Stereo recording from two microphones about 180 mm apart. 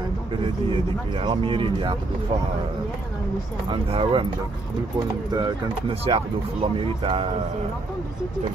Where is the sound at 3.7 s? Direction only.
30° right (ahead or behind).